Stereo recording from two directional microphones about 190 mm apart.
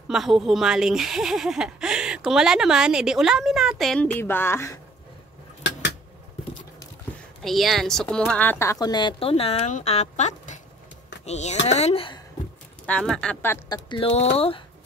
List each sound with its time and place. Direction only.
0.1 s speech: centre (ahead or behind)
7.4 s a woman's voice: centre (ahead or behind); by 12.2 s 30° left (ahead or behind)
12.8 s speech: 5° left (ahead or behind)
13.8 s a woman's voice: 25° left (ahead or behind)